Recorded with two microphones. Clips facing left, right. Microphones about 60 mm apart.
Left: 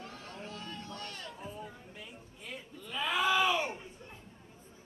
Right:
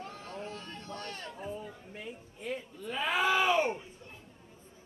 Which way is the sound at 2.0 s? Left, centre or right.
Right.